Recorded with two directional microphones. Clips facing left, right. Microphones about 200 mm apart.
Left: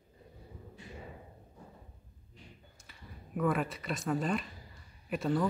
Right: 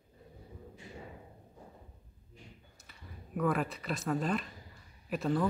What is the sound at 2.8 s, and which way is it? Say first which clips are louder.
Speech: even; centre (ahead or behind).